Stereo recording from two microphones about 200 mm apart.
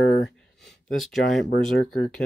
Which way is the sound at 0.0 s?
55° left (ahead or behind).